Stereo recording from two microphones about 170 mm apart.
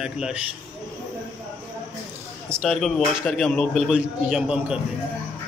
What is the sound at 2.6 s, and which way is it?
A man's voice, 5° left (ahead or behind).